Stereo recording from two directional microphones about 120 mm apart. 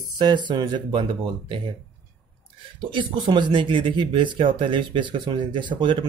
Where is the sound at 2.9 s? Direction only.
40° right (ahead or behind).